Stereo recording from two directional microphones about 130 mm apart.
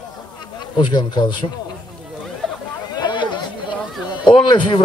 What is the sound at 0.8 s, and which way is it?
Speech, 35° left (ahead or behind).